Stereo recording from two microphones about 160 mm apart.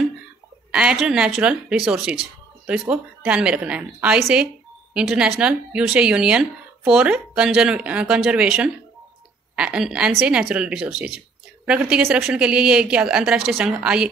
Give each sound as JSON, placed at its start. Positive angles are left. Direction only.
{"t": 0.7, "sound": "speech", "side_deg": -5}